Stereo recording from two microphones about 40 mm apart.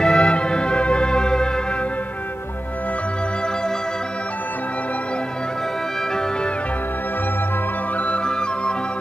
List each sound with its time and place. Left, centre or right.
0.0 s music: left